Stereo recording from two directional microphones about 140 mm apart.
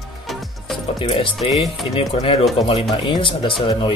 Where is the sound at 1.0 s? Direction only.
40° left (ahead or behind).